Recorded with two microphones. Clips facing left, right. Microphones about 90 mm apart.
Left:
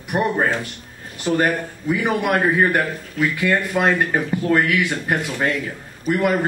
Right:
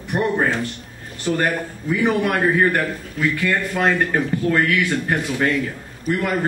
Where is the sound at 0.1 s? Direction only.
15° left (ahead or behind).